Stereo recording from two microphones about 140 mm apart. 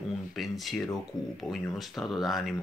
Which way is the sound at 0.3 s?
Centre (ahead or behind).